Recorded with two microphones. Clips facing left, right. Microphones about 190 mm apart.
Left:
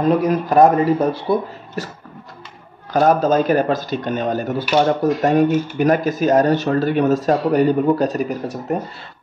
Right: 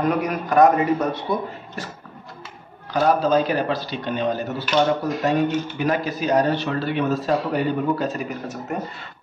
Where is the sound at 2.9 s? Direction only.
45° left (ahead or behind).